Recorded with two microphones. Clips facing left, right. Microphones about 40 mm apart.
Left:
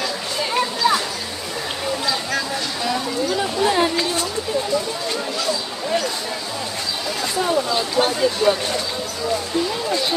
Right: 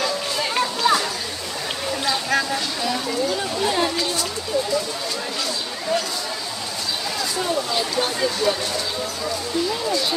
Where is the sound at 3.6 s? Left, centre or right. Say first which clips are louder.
Left 3 dB; centre.